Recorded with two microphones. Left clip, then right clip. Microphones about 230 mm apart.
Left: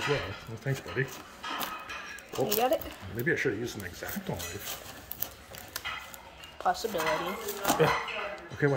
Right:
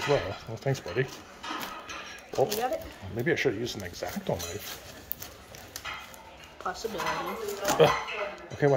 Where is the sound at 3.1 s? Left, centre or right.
Centre.